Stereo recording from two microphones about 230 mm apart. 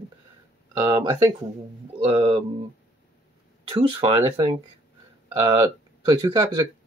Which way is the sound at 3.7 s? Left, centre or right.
Right.